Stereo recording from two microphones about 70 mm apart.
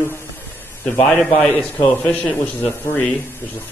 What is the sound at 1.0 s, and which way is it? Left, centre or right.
A man's voice, centre.